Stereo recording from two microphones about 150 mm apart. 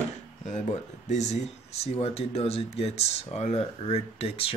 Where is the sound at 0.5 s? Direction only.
50° left (ahead or behind).